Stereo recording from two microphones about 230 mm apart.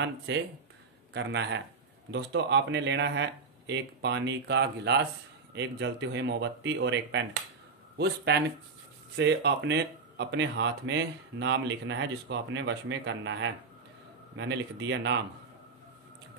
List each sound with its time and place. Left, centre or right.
0.3 s speech: right
9.1 s speech: right